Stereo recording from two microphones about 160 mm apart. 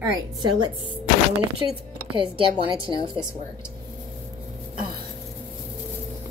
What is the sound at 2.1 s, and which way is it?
A woman's voice, 30° right (ahead or behind).